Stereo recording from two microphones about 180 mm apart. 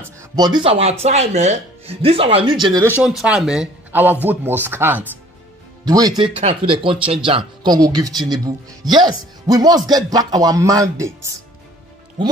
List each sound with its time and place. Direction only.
0.2 s speech: 25° right (ahead or behind)
2.6 s speech: 15° right (ahead or behind)
3.0 s speech: 5° right (ahead or behind)